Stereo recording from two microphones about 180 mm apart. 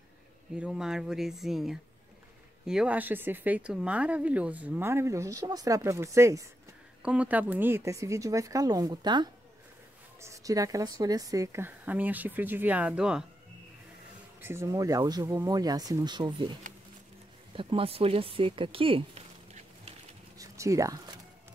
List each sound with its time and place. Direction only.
0.6 s speech: 5° right (ahead or behind)
14.4 s speech: 15° right (ahead or behind)
17.6 s speech: 30° right (ahead or behind)
20.3 s a sound: 15° right (ahead or behind)